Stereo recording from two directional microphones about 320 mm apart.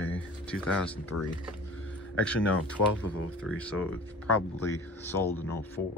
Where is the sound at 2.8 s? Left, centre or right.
Left.